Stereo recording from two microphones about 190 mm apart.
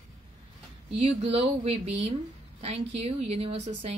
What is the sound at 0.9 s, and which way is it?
Speech, 30° right (ahead or behind).